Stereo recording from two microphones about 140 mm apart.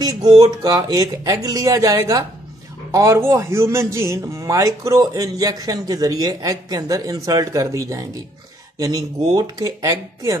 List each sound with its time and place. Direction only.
0.0 s a man's voice: 30° right (ahead or behind)